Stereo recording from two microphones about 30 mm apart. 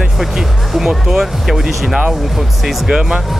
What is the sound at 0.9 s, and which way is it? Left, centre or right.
Speech, right.